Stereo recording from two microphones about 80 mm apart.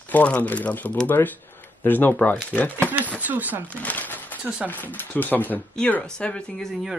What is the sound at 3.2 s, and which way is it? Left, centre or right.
Speech, right.